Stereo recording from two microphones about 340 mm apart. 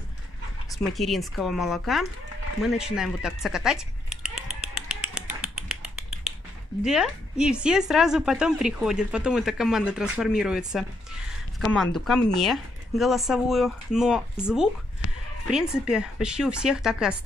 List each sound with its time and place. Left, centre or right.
0.9 s speech: centre
2.6 s a sound: centre
6.8 s speech: centre